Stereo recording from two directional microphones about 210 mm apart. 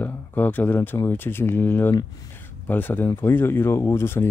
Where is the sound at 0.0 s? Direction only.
10° left (ahead or behind).